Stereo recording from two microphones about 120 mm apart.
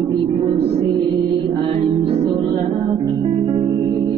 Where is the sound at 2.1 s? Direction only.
50° right (ahead or behind).